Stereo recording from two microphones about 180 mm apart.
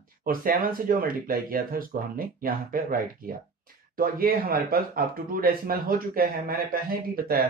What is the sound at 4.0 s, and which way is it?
A man's voice, 55° right (ahead or behind).